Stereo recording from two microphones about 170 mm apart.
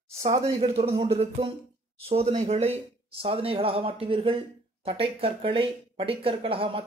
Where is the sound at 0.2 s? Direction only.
35° right (ahead or behind).